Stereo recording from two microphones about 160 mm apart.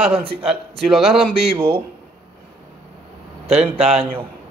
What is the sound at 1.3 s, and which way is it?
Speech, 35° right (ahead or behind).